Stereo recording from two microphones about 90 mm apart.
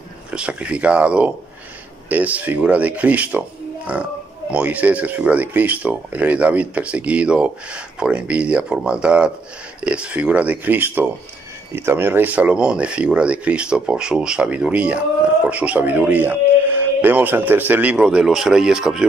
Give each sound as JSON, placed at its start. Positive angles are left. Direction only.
{"t": 0.3, "sound": "speech", "side_deg": -10}